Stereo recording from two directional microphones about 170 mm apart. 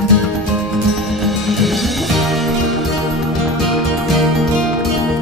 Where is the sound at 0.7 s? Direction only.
Centre (ahead or behind).